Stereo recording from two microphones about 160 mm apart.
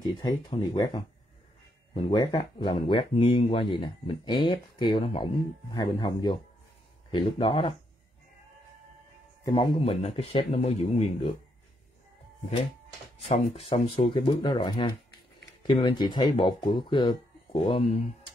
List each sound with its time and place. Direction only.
0.0 s speech: 25° left (ahead or behind)
9.4 s speech: 30° left (ahead or behind)
13.3 s speech: 35° left (ahead or behind)